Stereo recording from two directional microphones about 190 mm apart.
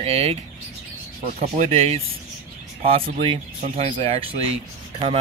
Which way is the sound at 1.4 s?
35° right (ahead or behind).